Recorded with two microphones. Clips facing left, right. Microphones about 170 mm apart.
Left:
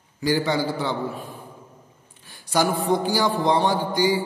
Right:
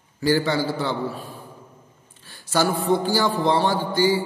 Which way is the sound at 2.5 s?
15° left (ahead or behind).